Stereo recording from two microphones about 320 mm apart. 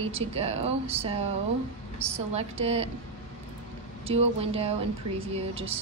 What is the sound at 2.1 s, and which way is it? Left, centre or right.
Speech, centre.